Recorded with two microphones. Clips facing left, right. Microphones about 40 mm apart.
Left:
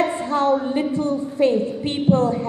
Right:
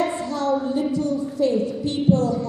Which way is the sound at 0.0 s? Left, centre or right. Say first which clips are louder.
Left 4 dB; left.